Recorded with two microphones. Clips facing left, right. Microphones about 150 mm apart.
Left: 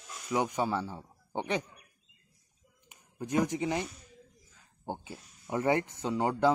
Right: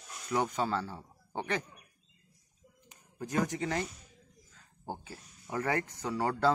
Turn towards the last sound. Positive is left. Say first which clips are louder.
# left 2 dB
turn(degrees=15)  # may be behind; listen again after turning